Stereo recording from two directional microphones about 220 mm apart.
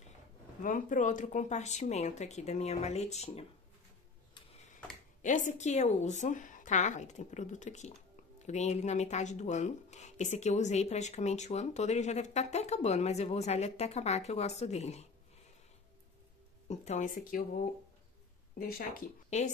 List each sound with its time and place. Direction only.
0.6 s speech: 35° left (ahead or behind)
5.2 s speech: 35° left (ahead or behind)
16.6 s speech: 30° left (ahead or behind)
18.6 s speech: 45° left (ahead or behind)
19.3 s speech: 30° left (ahead or behind)